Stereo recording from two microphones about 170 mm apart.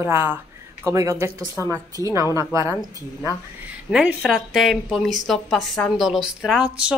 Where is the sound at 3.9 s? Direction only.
Centre (ahead or behind).